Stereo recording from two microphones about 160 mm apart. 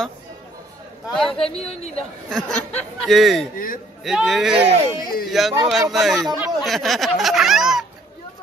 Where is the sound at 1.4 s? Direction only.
35° left (ahead or behind).